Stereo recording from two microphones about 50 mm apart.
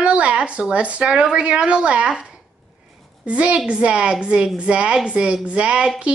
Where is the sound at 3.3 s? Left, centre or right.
Right.